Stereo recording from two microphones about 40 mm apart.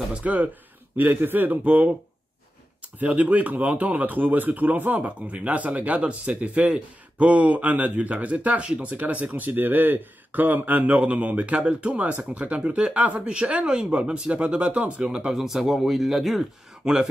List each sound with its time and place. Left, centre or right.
0.1 s speech: right
0.9 s a man's voice: right
1.6 s speech: right
3.0 s speech: right
8.9 s speech: right
15.3 s speech: centre
16.8 s speech: centre